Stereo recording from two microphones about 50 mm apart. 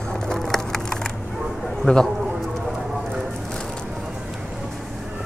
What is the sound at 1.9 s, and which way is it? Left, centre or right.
Speech, left.